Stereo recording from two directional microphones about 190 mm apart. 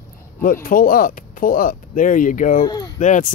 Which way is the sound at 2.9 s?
40° left (ahead or behind).